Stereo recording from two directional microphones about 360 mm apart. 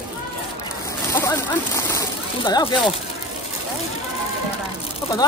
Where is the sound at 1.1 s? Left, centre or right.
Centre.